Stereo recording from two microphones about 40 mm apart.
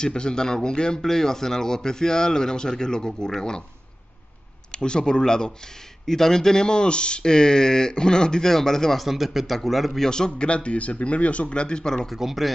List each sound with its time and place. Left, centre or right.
0.0 s speech: centre
4.6 s speech: left
8.9 s speech: centre
10.0 s speech: centre
10.5 s speech: left
12.2 s speech: centre